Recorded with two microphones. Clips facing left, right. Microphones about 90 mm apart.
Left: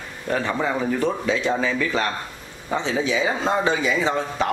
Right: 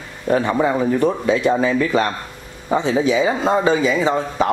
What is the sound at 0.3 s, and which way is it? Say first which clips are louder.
Speech: right 6 dB; 20° right (ahead or behind).